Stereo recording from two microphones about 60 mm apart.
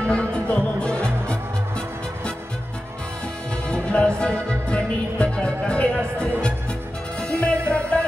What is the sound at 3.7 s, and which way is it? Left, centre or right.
Music, centre.